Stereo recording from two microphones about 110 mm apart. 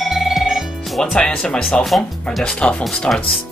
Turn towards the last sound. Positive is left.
turn(degrees=5)  # may be behind; listen again after turning